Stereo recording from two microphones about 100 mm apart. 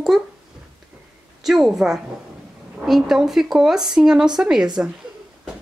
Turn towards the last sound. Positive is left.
turn(degrees=-5)  # may be behind; listen again after turning